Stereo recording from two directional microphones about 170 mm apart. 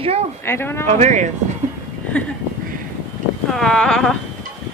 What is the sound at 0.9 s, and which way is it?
Speech, 45° right (ahead or behind).